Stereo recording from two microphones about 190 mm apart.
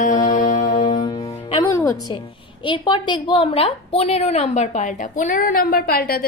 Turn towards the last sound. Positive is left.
turn(degrees=55)  # may be behind; listen again after turning